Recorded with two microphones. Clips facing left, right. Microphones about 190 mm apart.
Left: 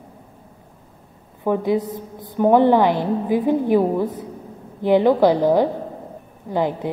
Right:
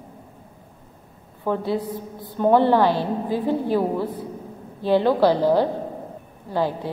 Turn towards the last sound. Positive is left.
turn(degrees=20)  # may be behind; listen again after turning